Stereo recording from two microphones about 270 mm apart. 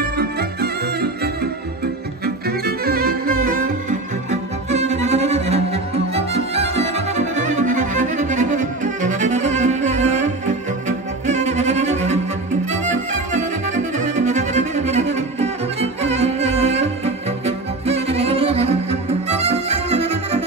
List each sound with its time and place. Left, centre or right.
0.2 s music: right
2.2 s music: right